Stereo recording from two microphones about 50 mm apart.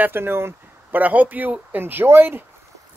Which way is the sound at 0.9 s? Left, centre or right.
Right.